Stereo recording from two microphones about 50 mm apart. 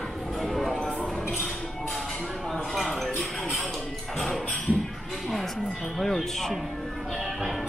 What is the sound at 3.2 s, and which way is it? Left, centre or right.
Music, centre.